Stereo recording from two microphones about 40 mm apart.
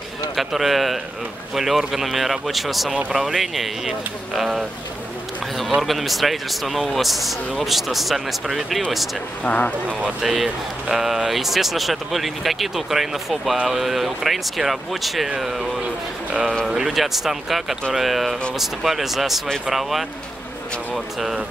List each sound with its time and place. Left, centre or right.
0.4 s speech: centre
5.8 s speech: centre
9.4 s speech: left
10.2 s speech: centre
15.2 s speech: centre
16.6 s speech: centre